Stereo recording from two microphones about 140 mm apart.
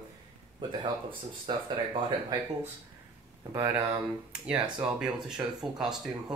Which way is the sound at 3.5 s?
20° right (ahead or behind).